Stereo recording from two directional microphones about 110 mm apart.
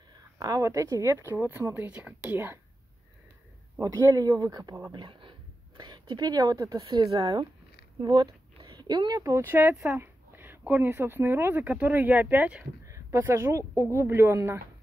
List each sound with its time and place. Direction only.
0.4 s speech: 30° right (ahead or behind)
3.8 s speech: 30° right (ahead or behind)
4.9 s a woman's voice: 45° right (ahead or behind)
6.8 s speech: 50° right (ahead or behind)
7.1 s speech: 35° right (ahead or behind); by 12.6 s 15° right (ahead or behind)
12.8 s speech: 25° right (ahead or behind)